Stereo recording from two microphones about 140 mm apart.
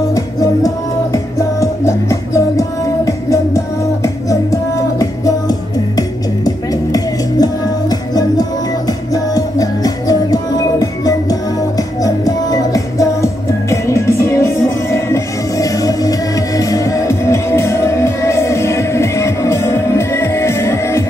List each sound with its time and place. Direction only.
0.1 s music: 25° left (ahead or behind)